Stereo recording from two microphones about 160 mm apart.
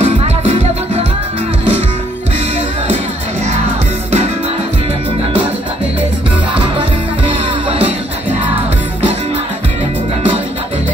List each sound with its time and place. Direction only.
0.0 s music: 35° right (ahead or behind)